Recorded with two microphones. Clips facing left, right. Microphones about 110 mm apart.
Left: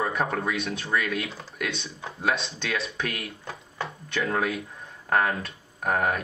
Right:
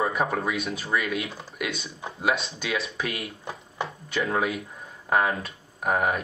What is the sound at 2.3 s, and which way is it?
Speech, 5° right (ahead or behind).